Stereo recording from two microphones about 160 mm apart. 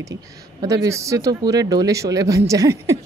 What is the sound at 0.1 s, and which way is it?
Speech, 20° right (ahead or behind).